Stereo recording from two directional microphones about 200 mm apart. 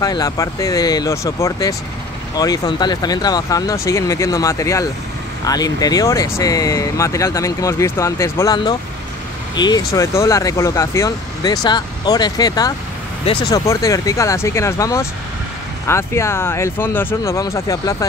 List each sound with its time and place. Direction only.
0.0 s speech: 15° left (ahead or behind)